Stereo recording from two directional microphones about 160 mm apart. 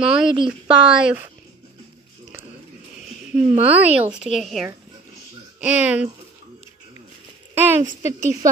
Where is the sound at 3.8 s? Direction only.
10° right (ahead or behind).